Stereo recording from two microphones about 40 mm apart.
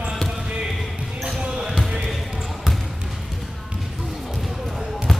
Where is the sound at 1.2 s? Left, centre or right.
Centre.